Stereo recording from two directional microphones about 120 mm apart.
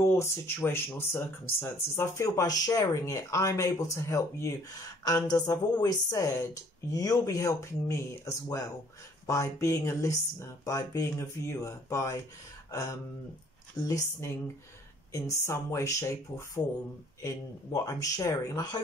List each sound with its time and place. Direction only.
0.0 s speech: 20° left (ahead or behind)
13.7 s speech: 30° left (ahead or behind)
17.7 s speech: 30° left (ahead or behind)